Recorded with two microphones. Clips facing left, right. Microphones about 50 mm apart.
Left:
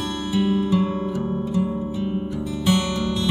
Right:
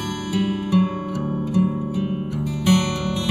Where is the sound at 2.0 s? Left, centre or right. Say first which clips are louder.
Right 1 dB; right.